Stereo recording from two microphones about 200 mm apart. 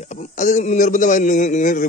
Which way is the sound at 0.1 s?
35° left (ahead or behind).